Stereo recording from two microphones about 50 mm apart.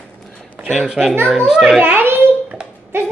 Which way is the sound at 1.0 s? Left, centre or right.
Centre.